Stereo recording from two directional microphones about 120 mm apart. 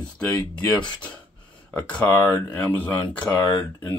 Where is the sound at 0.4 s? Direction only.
40° left (ahead or behind).